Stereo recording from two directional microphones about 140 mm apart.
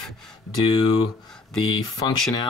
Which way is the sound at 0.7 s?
35° left (ahead or behind).